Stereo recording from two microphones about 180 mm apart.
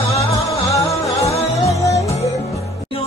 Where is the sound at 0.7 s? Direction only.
20° left (ahead or behind).